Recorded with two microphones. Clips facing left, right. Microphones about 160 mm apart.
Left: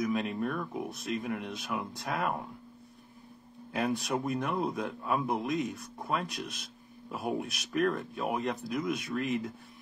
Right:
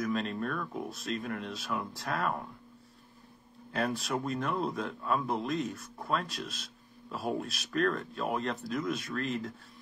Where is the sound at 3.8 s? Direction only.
15° left (ahead or behind).